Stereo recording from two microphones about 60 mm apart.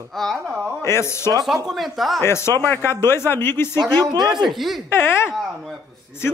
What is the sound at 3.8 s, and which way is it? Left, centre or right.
Speech, right.